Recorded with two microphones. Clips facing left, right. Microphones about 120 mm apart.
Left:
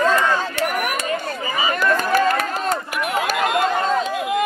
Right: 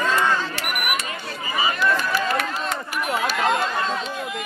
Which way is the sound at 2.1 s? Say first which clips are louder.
Left 5 dB; 45° left (ahead or behind).